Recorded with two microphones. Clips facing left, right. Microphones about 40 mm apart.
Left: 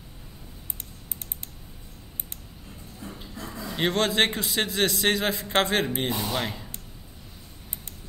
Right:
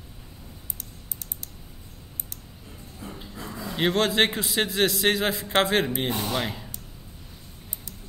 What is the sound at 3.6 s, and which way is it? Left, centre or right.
A man's voice, centre.